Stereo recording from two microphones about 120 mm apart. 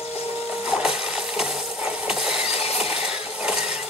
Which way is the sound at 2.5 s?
55° left (ahead or behind).